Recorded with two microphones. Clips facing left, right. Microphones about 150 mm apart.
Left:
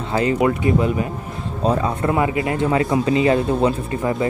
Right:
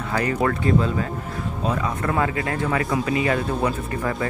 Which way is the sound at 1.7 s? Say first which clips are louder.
Left 6 dB; 30° left (ahead or behind).